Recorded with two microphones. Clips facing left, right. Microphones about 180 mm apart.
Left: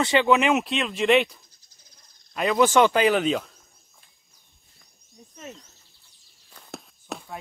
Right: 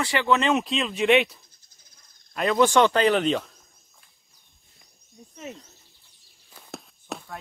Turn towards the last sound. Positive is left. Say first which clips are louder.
# even
turn(degrees=0)  # may be behind; listen again after turning